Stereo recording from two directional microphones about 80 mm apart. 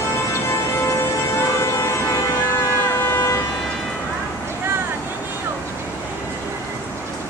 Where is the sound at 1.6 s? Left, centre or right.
Left.